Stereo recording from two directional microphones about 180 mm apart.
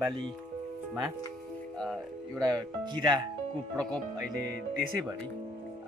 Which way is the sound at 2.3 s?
20° right (ahead or behind).